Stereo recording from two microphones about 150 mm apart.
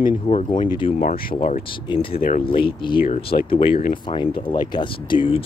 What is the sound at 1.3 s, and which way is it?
Speech, 45° left (ahead or behind).